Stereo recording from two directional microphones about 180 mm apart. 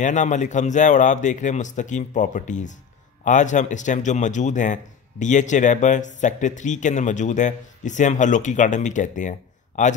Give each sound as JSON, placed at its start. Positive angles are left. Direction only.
{"t": 0.0, "sound": "speech", "side_deg": 45}